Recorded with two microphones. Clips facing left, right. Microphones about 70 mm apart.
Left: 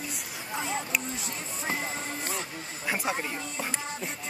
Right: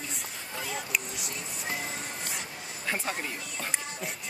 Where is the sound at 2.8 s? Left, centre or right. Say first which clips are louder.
Left 2 dB; centre.